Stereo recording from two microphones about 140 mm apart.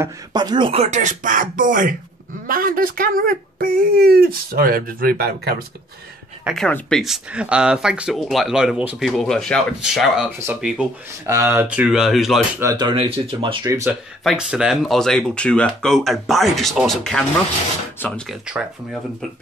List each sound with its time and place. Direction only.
0.3 s speech: 30° right (ahead or behind); by 2.0 s 75° right (ahead or behind)
2.4 s speech: 85° right
6.4 s speech: centre (ahead or behind)
11.2 s speech: 20° right (ahead or behind); by 12.4 s centre (ahead or behind)
12.7 s speech: 35° right (ahead or behind)
14.2 s speech: 5° right (ahead or behind)
18.0 s speech: 15° left (ahead or behind)
18.3 s speech: 5° right (ahead or behind)